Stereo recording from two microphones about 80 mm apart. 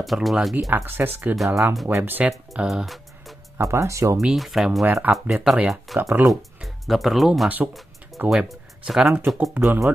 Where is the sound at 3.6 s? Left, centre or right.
Right.